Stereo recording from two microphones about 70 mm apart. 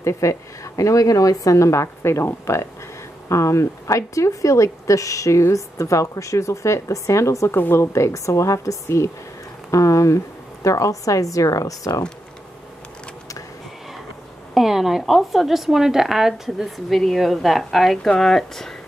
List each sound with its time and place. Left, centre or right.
0.0 s a woman's voice: left
14.5 s speech: centre